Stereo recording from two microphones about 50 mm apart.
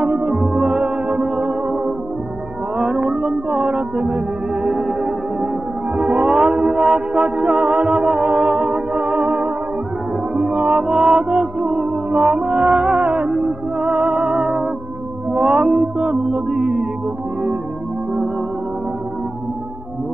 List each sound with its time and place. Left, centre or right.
0.0 s music: right
2.8 s music: right
4.8 s music: centre
5.9 s mantra: right
10.3 s music: right